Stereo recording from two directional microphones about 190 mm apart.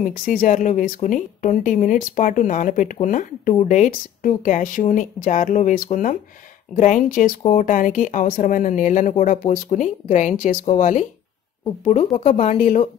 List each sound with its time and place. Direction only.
0.0 s speech: 45° left (ahead or behind)